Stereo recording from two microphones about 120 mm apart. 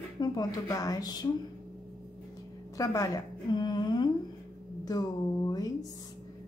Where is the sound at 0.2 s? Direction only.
35° left (ahead or behind).